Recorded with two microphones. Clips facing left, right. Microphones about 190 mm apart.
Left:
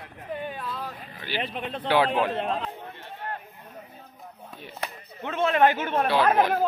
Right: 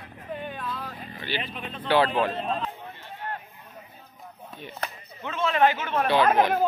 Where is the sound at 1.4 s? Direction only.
70° left (ahead or behind).